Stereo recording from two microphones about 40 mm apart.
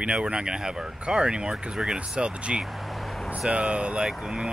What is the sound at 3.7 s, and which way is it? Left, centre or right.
Speech, right.